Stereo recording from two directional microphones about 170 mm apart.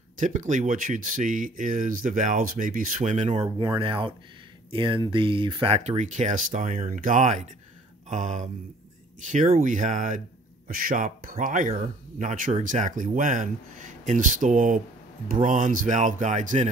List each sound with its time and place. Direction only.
0.2 s speech: 50° right (ahead or behind)
3.5 s speech: 30° right (ahead or behind); by 16.6 s 45° right (ahead or behind)